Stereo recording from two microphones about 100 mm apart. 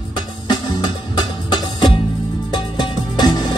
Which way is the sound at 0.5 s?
45° left (ahead or behind).